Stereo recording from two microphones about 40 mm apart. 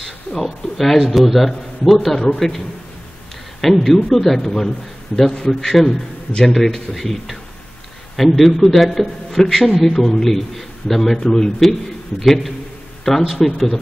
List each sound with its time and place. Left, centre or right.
0.0 s a sound: centre
0.7 s a man's voice: centre
3.6 s a man's voice: centre
6.5 s a man's voice: centre
8.4 s a man's voice: centre